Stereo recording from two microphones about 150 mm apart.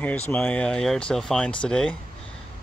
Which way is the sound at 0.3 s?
10° left (ahead or behind).